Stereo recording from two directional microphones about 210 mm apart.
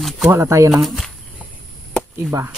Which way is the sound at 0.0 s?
5° right (ahead or behind).